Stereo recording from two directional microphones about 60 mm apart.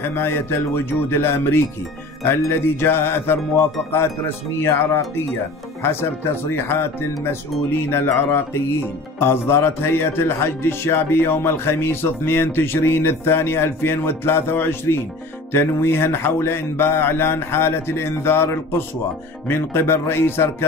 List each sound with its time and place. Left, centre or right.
0.0 s a man's voice: left